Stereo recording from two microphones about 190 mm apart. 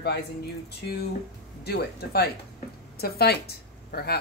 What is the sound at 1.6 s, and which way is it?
Speech, 55° left (ahead or behind).